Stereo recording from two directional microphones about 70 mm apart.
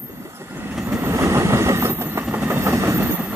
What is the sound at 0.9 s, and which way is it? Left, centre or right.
Vehicle, right.